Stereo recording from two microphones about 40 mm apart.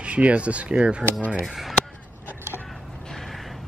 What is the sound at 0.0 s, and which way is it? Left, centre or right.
Speech, right.